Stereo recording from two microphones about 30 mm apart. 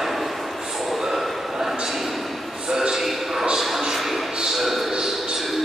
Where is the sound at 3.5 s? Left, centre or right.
Centre.